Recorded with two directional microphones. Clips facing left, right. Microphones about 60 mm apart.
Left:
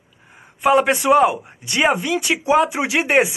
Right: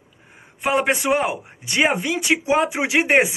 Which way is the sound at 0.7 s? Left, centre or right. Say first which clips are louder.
Left 5 dB; centre.